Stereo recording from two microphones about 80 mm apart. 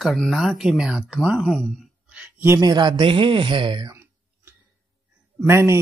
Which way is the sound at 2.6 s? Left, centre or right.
Right.